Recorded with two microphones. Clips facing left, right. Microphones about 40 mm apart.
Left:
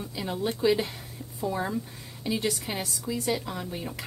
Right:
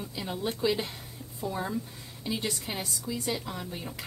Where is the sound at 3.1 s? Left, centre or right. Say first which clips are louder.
Left 4 dB; centre.